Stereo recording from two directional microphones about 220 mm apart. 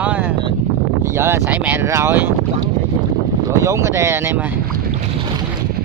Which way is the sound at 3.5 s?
15° right (ahead or behind).